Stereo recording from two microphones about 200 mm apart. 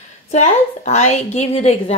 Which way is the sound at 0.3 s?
35° left (ahead or behind).